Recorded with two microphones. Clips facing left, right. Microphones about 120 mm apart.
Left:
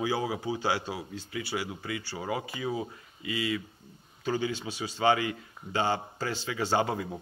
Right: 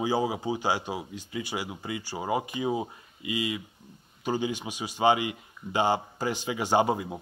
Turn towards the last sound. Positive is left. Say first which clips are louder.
# right 4 dB
turn(degrees=-20)  # may be behind; listen again after turning